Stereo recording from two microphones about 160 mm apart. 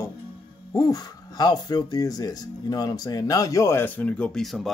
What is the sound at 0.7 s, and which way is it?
Speech, 20° left (ahead or behind).